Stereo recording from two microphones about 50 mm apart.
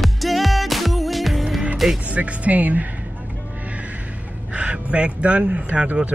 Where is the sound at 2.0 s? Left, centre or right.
Right.